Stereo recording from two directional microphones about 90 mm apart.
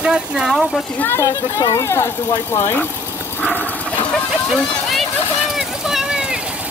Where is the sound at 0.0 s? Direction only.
10° right (ahead or behind).